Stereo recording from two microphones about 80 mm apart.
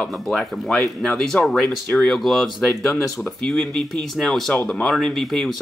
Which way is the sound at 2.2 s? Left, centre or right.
Centre.